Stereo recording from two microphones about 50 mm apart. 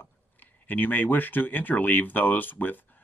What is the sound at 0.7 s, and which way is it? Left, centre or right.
Speech, left.